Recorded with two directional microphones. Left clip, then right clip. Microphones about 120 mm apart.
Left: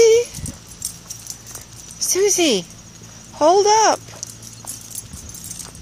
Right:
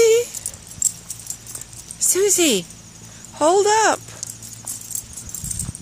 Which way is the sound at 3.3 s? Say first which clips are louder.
Left 2 dB; 20° right (ahead or behind).